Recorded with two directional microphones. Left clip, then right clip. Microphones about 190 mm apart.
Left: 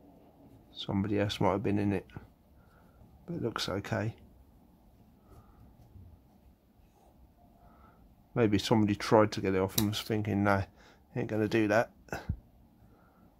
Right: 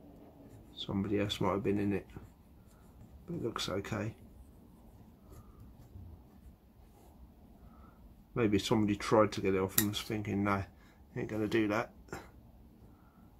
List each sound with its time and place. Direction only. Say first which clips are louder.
0.7 s speech: left 3 dB; 55° left (ahead or behind)
3.4 s speech: left 3 dB; 50° left (ahead or behind)
8.4 s speech: left 3 dB; 50° left (ahead or behind)